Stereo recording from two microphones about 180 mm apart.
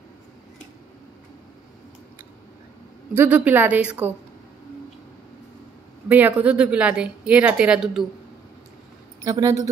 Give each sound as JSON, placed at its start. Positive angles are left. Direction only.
{"t": 3.2, "sound": "speech", "side_deg": -10}
{"t": 6.0, "sound": "speech", "side_deg": -10}
{"t": 9.2, "sound": "speech", "side_deg": -15}